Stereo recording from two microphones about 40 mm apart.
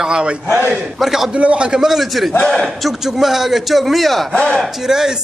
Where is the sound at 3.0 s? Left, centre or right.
Centre.